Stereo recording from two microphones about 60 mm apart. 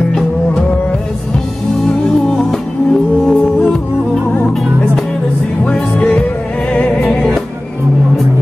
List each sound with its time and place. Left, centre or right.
2.3 s music: centre
5.7 s music: centre